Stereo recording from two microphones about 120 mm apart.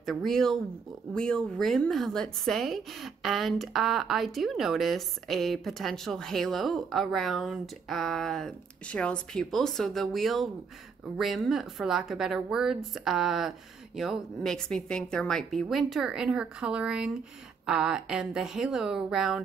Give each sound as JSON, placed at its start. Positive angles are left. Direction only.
{"t": 0.0, "sound": "a woman's voice", "side_deg": 0}